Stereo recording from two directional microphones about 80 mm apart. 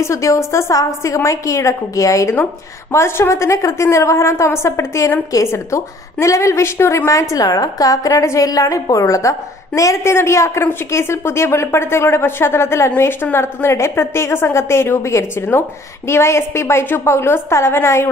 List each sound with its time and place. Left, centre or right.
0.0 s a woman's voice: left